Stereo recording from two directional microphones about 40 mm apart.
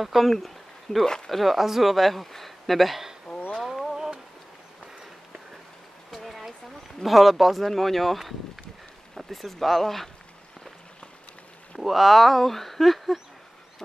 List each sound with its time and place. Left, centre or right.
0.0 s speech: centre
1.0 s speech: centre
1.3 s speech: centre
3.5 s a sound: centre
6.0 s a sound: centre
7.0 s speech: centre
11.8 s speech: centre